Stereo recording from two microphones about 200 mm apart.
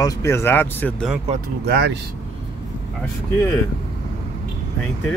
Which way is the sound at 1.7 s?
50° right (ahead or behind).